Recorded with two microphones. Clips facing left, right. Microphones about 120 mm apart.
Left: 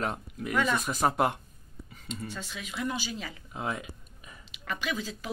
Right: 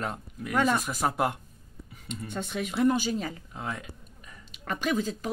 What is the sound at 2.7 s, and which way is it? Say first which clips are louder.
Speech: right 9 dB; 45° right (ahead or behind).